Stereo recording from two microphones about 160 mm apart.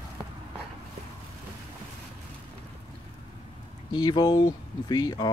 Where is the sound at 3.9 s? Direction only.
25° left (ahead or behind).